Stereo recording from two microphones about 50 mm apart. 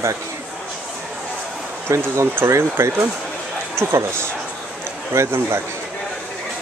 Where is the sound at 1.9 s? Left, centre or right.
Right.